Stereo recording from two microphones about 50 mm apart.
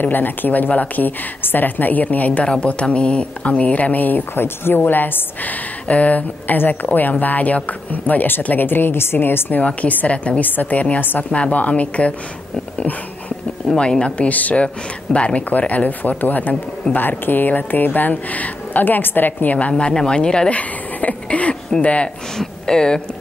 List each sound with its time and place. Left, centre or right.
0.0 s a woman's voice: left
9.5 s a woman's voice: left
10.4 s a woman's voice: left
13.7 s a woman's voice: centre; by 16.5 s left
16.8 s speech: centre
17.3 s a woman's voice: left
19.7 s speech: centre